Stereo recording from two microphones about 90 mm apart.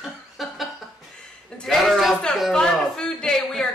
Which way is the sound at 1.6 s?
5° left (ahead or behind).